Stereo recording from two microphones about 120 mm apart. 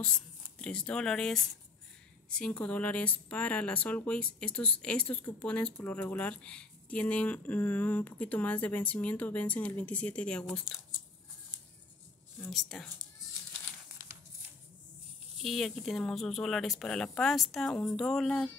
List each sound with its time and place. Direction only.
0.6 s speech: 5° left (ahead or behind)
12.4 s speech: centre (ahead or behind)
15.4 s speech: centre (ahead or behind)